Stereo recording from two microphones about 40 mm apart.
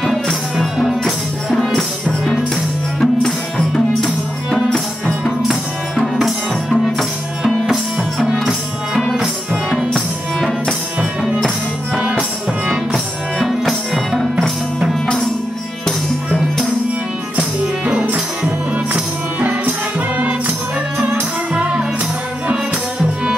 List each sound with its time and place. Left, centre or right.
0.0 s music: centre
3.0 s music: centre
6.7 s music: centre
9.7 s music: centre
12.9 s music: centre
17.8 s music: right